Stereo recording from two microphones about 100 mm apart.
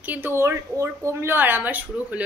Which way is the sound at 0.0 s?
20° right (ahead or behind).